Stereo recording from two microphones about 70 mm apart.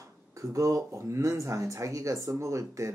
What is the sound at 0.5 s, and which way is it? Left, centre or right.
Speech, right.